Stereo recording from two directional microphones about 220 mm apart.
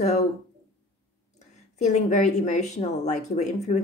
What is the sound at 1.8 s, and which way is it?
Speech, 35° left (ahead or behind).